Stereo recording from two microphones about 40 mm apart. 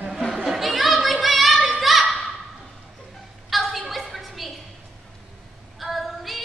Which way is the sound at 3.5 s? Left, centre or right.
Centre.